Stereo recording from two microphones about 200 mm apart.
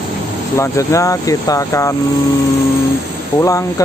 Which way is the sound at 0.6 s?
15° left (ahead or behind).